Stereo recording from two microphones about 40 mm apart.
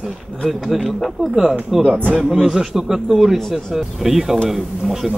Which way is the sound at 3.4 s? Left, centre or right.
Centre.